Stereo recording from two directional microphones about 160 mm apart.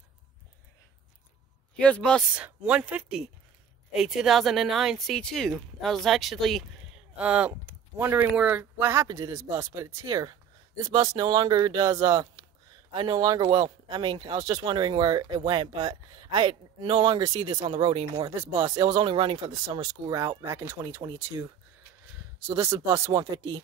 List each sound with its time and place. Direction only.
1.8 s speech: 5° left (ahead or behind)
2.3 s speech: 10° right (ahead or behind); by 18.3 s 30° right (ahead or behind)
18.3 s speech: 15° right (ahead or behind)
22.5 s speech: 15° right (ahead or behind)